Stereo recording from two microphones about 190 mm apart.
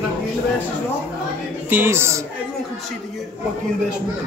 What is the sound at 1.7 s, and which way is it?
Speech, 10° right (ahead or behind).